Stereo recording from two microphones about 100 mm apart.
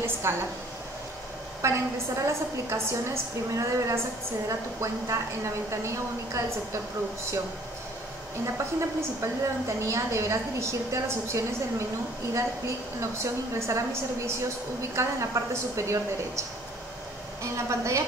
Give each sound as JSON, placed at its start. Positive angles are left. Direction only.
{"t": 0.0, "sound": "a woman's voice", "side_deg": -25}
{"t": 1.6, "sound": "a woman's voice", "side_deg": -30}
{"t": 8.5, "sound": "a woman's voice", "side_deg": -30}